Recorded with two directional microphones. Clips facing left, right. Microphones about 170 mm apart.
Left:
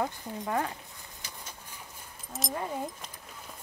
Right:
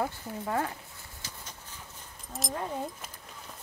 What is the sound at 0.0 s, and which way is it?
Speech, 15° left (ahead or behind).